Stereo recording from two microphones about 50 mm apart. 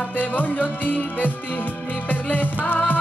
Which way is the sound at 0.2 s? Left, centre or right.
Left.